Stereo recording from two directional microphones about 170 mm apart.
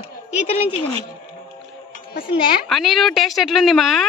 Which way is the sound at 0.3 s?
40° left (ahead or behind).